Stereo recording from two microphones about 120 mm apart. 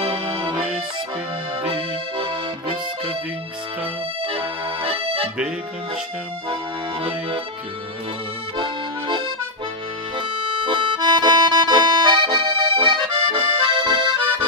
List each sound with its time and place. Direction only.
0.0 s accordion: 50° right (ahead or behind)
1.6 s accordion: 50° right (ahead or behind)
4.2 s accordion: 50° right (ahead or behind)
8.5 s accordion: 45° right (ahead or behind)